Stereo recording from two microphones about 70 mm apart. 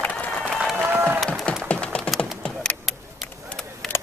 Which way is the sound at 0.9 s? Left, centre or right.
Right.